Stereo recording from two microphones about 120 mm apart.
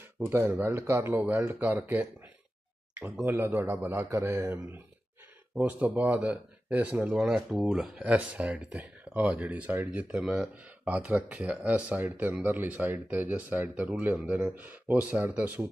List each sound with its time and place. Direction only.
0.2 s speech: 20° right (ahead or behind)
5.5 s speech: 10° right (ahead or behind)